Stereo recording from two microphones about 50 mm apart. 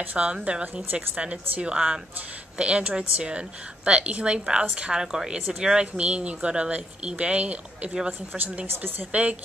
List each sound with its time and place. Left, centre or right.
0.0 s a woman's voice: right
9.1 s a woman's voice: right